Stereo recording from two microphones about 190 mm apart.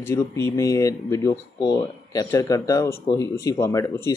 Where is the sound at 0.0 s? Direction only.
15° left (ahead or behind).